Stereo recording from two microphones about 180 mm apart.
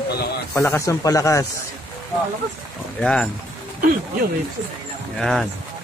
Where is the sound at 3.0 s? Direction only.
5° left (ahead or behind).